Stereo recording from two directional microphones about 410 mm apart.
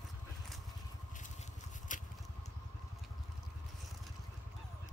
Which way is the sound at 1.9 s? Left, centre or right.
Centre.